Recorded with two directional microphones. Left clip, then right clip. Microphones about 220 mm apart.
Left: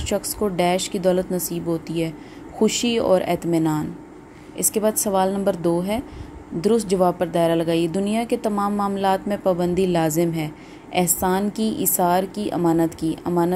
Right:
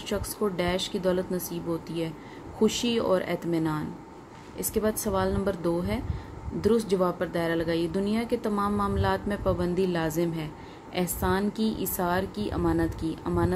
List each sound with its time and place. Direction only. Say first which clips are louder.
0.0 s a woman's voice: left 6 dB; 20° left (ahead or behind)